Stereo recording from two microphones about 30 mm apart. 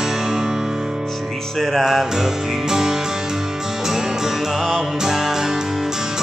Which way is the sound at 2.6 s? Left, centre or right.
Centre.